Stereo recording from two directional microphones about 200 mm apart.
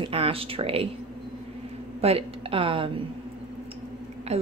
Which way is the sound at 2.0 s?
30° right (ahead or behind).